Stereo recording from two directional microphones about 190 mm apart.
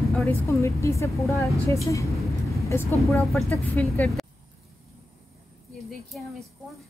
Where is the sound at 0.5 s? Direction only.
15° left (ahead or behind).